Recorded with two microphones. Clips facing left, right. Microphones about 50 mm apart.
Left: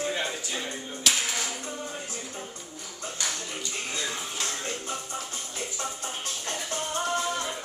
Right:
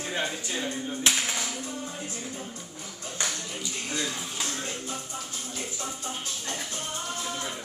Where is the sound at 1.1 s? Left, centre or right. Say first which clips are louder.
Even; right.